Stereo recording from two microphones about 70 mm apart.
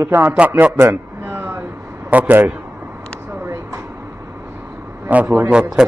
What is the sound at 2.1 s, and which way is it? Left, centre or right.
Speech, right.